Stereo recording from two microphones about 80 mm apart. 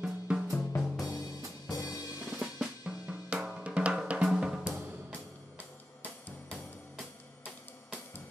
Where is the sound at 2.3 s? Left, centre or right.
Centre.